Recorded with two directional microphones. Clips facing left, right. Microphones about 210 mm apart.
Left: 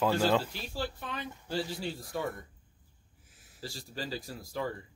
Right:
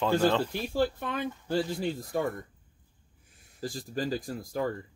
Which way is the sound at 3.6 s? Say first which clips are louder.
Right 7 dB; 50° right (ahead or behind).